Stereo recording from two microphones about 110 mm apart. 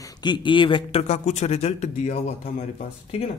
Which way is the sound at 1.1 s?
85° left.